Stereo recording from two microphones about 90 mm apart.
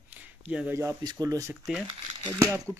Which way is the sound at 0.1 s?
15° right (ahead or behind).